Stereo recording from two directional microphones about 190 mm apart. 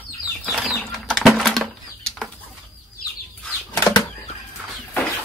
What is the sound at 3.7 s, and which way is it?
Bird flight, 20° left (ahead or behind).